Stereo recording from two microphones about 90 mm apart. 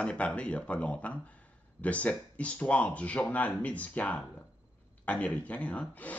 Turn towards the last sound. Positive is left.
turn(degrees=15)  # may be behind; listen again after turning